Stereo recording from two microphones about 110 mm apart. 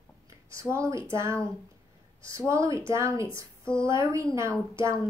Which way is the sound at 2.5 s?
25° right (ahead or behind).